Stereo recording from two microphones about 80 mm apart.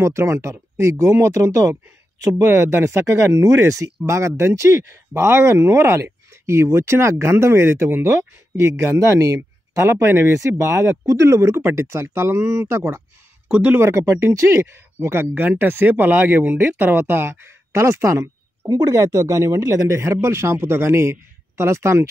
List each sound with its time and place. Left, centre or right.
0.0 s speech: right
13.5 s speech: centre
13.7 s speech: right